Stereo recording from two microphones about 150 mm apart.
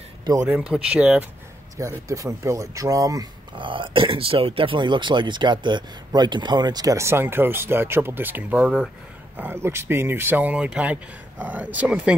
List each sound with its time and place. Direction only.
0.2 s speech: 25° right (ahead or behind)
0.5 s speech: 5° right (ahead or behind)
1.8 s speech: 20° right (ahead or behind); by 8.9 s 5° right (ahead or behind)
9.4 s speech: 15° right (ahead or behind)